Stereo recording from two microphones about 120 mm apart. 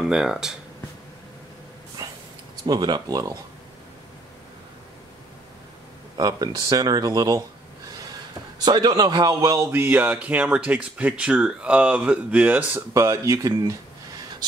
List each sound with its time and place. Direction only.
0.0 s speech: 5° right (ahead or behind)
2.0 s a sound: 30° right (ahead or behind)
2.6 s speech: 35° right (ahead or behind)
6.1 s speech: 35° right (ahead or behind)
8.6 s speech: 35° right (ahead or behind)
9.7 s speech: 15° right (ahead or behind)
12.9 s speech: 25° right (ahead or behind)